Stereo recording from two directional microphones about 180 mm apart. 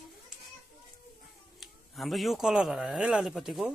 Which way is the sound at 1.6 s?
Centre (ahead or behind).